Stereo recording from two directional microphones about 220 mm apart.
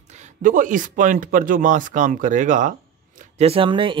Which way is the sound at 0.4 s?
35° right (ahead or behind).